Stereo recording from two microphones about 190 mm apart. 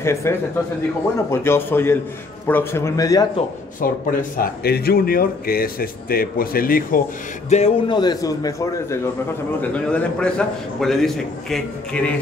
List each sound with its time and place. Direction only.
0.0 s a man's voice: 15° left (ahead or behind)
3.8 s speech: 45° left (ahead or behind)
7.4 s a man's voice: 35° left (ahead or behind); by 12.1 s 5° left (ahead or behind)